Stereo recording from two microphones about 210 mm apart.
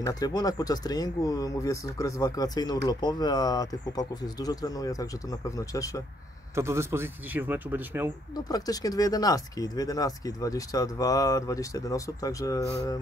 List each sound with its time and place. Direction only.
0.0 s speech: 15° left (ahead or behind)
6.5 s speech: 15° right (ahead or behind)
8.5 s speech: 20° left (ahead or behind)